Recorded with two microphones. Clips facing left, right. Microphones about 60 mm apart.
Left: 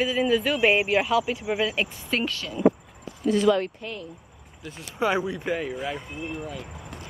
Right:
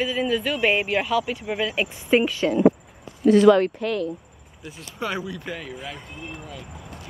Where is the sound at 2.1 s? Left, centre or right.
Centre.